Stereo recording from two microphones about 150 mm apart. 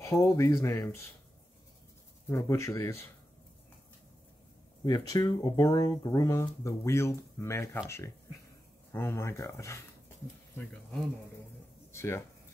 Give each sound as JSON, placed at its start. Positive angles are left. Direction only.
{"t": 0.0, "sound": "speech", "side_deg": 20}
{"t": 2.2, "sound": "speech", "side_deg": 20}
{"t": 4.8, "sound": "speech", "side_deg": 25}
{"t": 8.9, "sound": "speech", "side_deg": 15}
{"t": 10.6, "sound": "speech", "side_deg": 5}
{"t": 11.9, "sound": "speech", "side_deg": 15}